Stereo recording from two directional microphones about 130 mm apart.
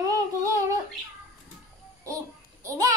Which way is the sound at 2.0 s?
25° right (ahead or behind).